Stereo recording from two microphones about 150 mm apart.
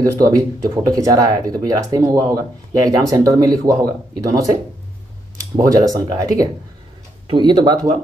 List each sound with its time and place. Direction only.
0.0 s speech: 25° right (ahead or behind)
5.6 s speech: 25° right (ahead or behind)
7.2 s speech: 30° right (ahead or behind)